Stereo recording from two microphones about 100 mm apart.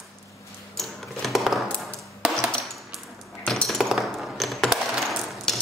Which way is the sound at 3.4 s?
5° left (ahead or behind).